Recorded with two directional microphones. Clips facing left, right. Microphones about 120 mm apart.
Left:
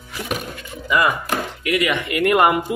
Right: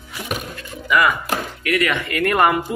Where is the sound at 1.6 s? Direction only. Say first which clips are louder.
Even; 20° left (ahead or behind).